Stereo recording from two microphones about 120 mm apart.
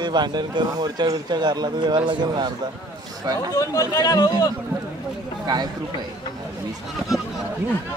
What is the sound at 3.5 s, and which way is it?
Speech, 25° left (ahead or behind).